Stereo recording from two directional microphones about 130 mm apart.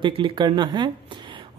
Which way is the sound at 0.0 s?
40° right (ahead or behind).